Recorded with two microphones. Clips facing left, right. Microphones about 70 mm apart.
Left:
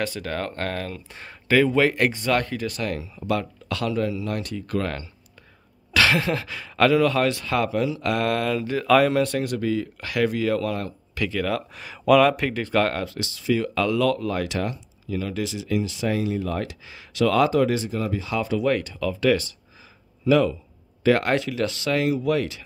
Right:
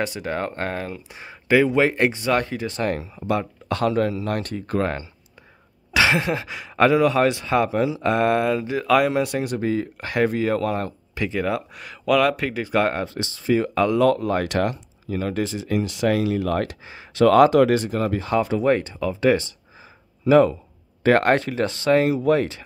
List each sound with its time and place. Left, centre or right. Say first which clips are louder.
0.0 s speech: right 2 dB; centre
2.8 s speech: right 4 dB; right
5.9 s speech: right 1 dB; centre
9.6 s speech: right 2 dB; right
11.7 s speech: left 5 dB; centre; by 14.8 s right
15.0 s speech: right 3 dB; right
16.8 s speech: right 5 dB; right
17.5 s speech: right 4 dB; right
18.5 s speech: right 3 dB; right